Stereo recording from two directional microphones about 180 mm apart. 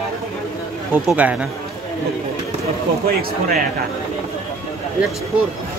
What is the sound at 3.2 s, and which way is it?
Speech, 55° right (ahead or behind).